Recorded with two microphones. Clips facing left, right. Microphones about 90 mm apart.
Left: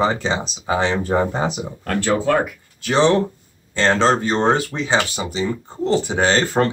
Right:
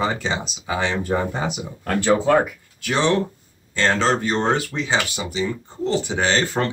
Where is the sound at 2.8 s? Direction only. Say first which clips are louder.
Left 4 dB; 30° left (ahead or behind).